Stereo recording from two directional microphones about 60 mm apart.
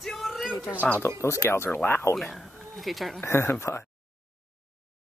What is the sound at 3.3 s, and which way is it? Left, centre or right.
Speech, left.